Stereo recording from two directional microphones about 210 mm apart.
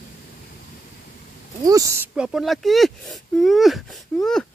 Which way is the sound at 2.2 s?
Centre (ahead or behind).